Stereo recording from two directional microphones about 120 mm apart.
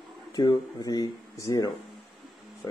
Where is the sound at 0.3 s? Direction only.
35° left (ahead or behind).